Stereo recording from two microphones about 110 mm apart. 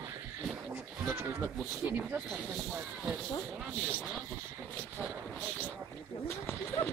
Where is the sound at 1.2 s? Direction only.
20° right (ahead or behind).